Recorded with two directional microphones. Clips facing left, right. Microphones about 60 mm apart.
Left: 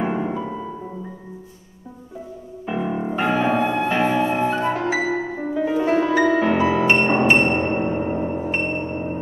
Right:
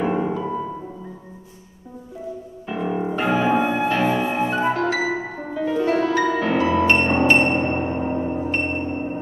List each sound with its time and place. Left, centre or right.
0.0 s music: centre
2.6 s music: centre
4.7 s music: centre